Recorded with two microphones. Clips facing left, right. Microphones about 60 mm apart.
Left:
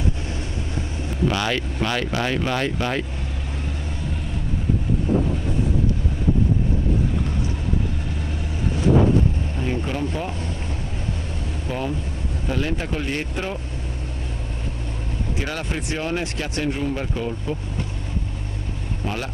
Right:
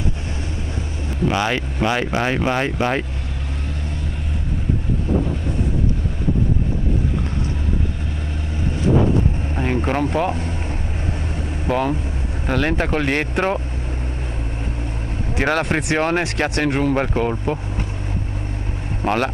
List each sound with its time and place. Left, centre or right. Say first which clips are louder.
1.2 s speech: right 3 dB; right
9.6 s vehicle: right 6 dB; right
11.6 s speech: right 7 dB; right
15.3 s speech: right 10 dB; right
19.0 s speech: right 9 dB; right